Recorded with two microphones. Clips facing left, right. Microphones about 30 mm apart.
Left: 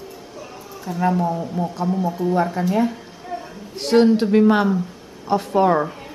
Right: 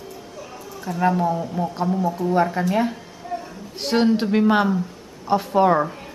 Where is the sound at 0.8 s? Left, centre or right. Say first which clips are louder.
Even; centre.